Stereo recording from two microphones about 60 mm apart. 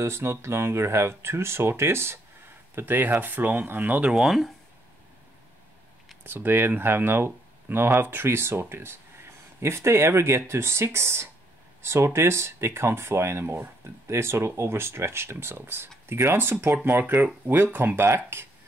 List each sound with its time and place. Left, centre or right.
0.0 s speech: right
4.1 s speech: centre
6.2 s speech: right